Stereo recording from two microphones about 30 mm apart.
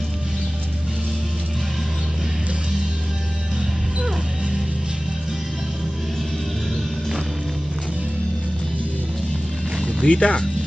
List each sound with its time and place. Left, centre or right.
10.0 s speech: left